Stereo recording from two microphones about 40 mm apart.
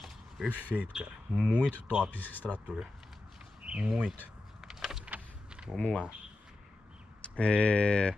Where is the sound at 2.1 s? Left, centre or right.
Left.